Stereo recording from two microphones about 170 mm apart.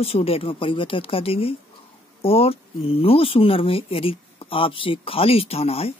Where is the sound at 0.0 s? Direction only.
35° left (ahead or behind).